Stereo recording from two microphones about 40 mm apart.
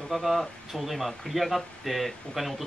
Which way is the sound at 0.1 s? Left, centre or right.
Centre.